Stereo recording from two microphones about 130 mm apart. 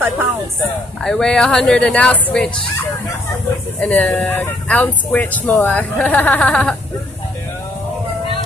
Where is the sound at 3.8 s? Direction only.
10° left (ahead or behind).